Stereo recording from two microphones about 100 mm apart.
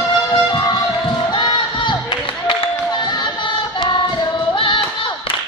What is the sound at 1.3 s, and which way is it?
Crowd, 50° left (ahead or behind).